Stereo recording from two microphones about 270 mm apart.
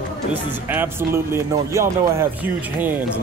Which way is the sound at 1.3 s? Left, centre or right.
Centre.